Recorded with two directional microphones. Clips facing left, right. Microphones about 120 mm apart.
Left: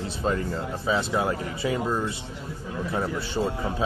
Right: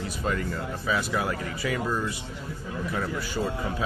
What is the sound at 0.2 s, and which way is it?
A man's voice, 30° left (ahead or behind).